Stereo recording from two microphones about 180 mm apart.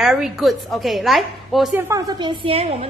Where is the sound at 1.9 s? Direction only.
20° right (ahead or behind).